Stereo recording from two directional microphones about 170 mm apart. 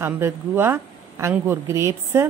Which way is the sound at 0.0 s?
15° right (ahead or behind).